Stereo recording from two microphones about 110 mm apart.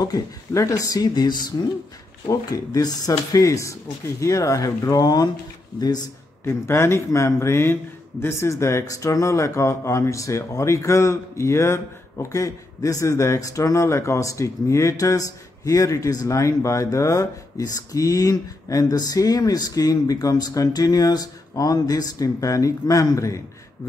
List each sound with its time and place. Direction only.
0.0 s speech: 30° left (ahead or behind)
6.4 s speech: 25° left (ahead or behind)